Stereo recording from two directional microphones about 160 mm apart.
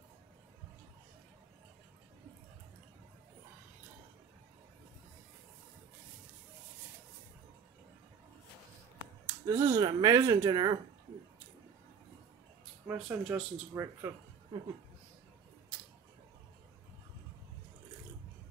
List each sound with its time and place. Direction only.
9.2 s finger snapping: 15° right (ahead or behind)
9.8 s speech: 25° right (ahead or behind)
12.8 s speech: 10° right (ahead or behind)